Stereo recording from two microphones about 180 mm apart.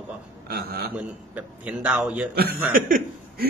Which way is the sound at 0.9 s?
5° right (ahead or behind).